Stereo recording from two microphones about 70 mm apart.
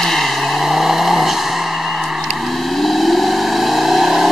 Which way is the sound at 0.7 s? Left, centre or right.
Centre.